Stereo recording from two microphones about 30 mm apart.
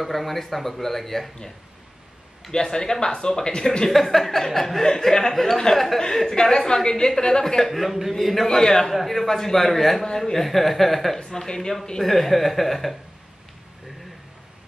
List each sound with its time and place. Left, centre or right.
0.0 s speech: centre
2.5 s speech: left
3.9 s speech: centre
4.8 s speech: centre
6.3 s speech: left
7.6 s a man's voice: centre
8.5 s speech: centre
8.9 s a man's voice: centre
10.0 s speech: centre
10.4 s a man's voice: centre
11.3 s speech: left
12.0 s a man's voice: centre